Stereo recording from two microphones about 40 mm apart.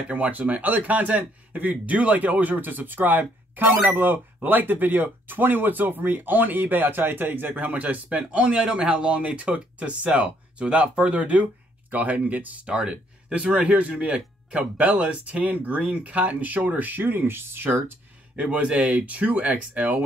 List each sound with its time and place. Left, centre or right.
0.1 s speech: right
12.6 s speech: right
15.4 s speech: right
18.3 s speech: right